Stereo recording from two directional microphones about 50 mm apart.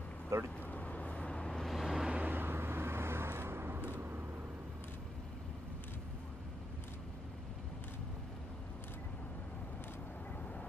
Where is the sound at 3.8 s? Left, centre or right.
Right.